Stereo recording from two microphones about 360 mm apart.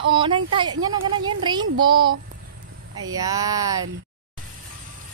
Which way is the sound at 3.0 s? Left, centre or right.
Centre.